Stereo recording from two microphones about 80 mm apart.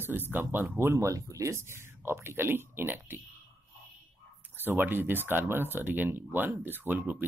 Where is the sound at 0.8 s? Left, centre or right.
Right.